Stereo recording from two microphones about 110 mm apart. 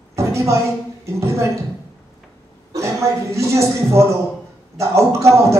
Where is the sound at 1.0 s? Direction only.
25° right (ahead or behind).